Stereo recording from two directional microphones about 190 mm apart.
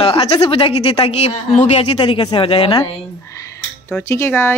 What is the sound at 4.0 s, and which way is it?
Speech, 15° left (ahead or behind).